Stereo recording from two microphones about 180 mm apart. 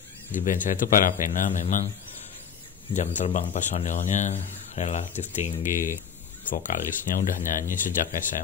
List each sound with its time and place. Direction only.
0.3 s speech: 50° left (ahead or behind)
2.9 s a man's voice: 40° left (ahead or behind)